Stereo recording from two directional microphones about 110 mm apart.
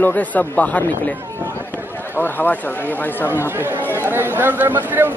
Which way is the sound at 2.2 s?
15° left (ahead or behind).